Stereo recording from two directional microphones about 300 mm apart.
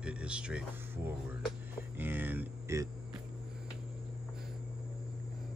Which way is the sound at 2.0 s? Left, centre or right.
Centre.